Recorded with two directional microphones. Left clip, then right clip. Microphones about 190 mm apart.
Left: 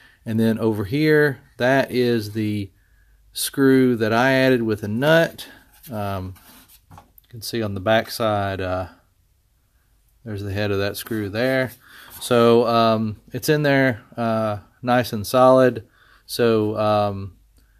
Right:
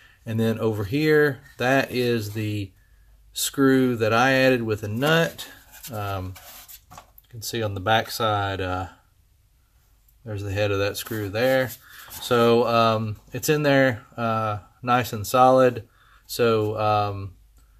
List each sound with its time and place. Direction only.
0.0 s speech: 45° left (ahead or behind)
7.3 s speech: 45° left (ahead or behind)
10.2 s speech: 45° left (ahead or behind)